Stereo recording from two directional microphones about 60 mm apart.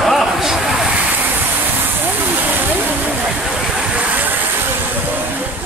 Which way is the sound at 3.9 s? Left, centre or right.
Right.